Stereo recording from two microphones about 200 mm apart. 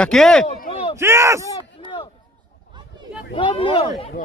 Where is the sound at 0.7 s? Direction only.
30° left (ahead or behind).